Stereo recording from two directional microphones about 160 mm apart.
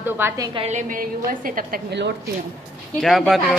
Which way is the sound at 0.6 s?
50° right (ahead or behind).